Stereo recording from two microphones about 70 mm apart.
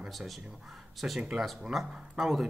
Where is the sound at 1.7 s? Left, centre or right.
Centre.